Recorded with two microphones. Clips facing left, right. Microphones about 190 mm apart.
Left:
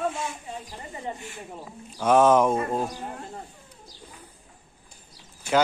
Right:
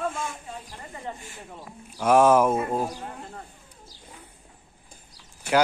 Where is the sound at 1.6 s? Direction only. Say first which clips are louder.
Even; 10° right (ahead or behind).